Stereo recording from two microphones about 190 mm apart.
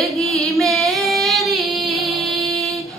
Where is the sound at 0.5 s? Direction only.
Centre (ahead or behind).